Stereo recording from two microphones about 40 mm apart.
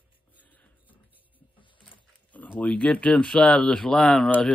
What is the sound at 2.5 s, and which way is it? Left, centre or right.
Speech, left.